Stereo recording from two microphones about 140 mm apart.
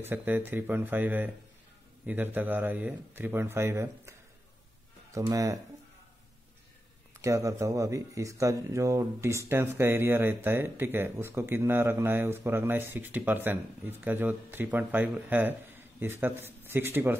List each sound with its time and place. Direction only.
0.0 s speech: 15° right (ahead or behind)
5.1 s speech: 25° right (ahead or behind)
7.2 s speech: 20° right (ahead or behind)